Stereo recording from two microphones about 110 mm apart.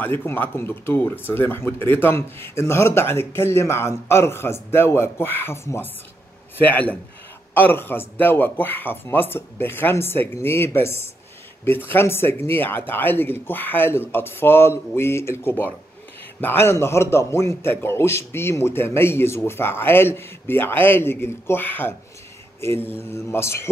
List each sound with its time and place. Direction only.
0.2 s a man's voice: 20° left (ahead or behind)